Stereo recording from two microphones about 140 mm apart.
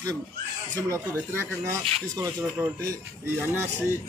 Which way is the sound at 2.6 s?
5° right (ahead or behind).